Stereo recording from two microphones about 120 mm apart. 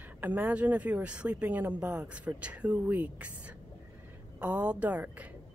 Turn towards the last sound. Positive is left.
turn(degrees=-10)  # may be behind; listen again after turning